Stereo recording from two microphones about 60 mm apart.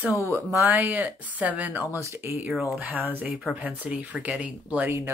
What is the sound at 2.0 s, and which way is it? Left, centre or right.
Speech, right.